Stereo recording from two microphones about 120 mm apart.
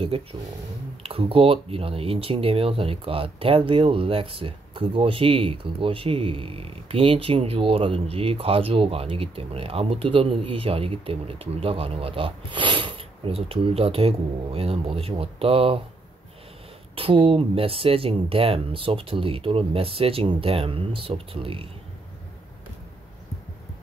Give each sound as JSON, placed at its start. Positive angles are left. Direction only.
{"t": 0.0, "sound": "speech", "side_deg": -50}
{"t": 16.9, "sound": "speech", "side_deg": -50}